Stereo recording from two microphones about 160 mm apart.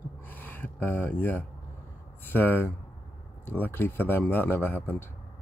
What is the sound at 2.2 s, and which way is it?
Speech, 10° left (ahead or behind).